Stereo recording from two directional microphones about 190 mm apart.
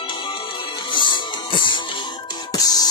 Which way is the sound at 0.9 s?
25° left (ahead or behind).